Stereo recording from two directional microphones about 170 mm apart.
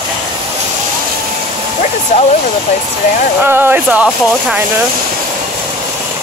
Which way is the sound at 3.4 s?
10° right (ahead or behind).